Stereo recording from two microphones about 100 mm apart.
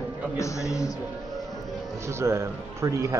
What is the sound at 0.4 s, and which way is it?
Speech, 30° left (ahead or behind).